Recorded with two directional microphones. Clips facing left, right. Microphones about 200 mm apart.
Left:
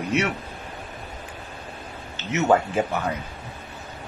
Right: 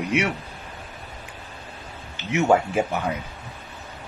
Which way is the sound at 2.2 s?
15° right (ahead or behind).